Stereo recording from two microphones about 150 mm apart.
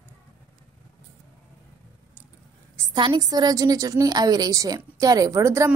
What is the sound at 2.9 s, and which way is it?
A woman's voice, 30° right (ahead or behind).